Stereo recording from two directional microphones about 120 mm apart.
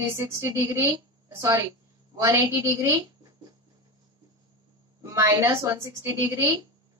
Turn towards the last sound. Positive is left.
turn(degrees=-30)  # may be behind; listen again after turning